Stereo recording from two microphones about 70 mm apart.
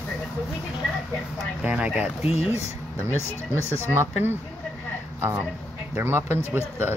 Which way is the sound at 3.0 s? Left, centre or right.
Left.